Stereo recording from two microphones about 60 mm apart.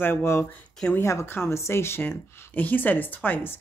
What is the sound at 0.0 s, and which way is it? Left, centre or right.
Speech, left.